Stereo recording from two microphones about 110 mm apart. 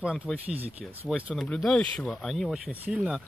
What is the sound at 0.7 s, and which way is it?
Speech, 65° right (ahead or behind).